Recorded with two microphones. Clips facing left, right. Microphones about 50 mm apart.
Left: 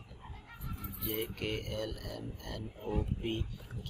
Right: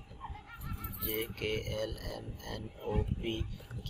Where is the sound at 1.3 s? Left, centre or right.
Centre.